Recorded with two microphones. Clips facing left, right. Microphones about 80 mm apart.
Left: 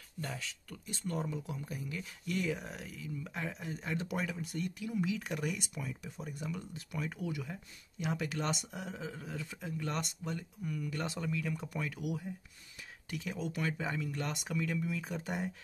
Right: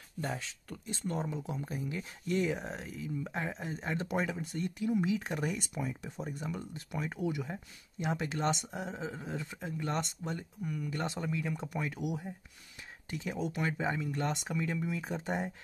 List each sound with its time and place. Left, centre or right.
0.2 s speech: right
10.6 s speech: centre
10.9 s speech: right